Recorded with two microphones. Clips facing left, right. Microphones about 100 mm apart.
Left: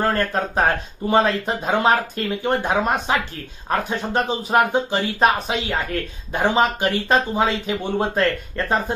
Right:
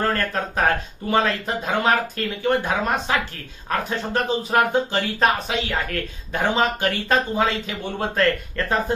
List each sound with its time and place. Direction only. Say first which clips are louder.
0.0 s speech: left 2 dB; 25° left (ahead or behind)